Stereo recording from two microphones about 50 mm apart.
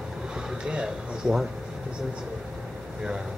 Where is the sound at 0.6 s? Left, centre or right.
Centre.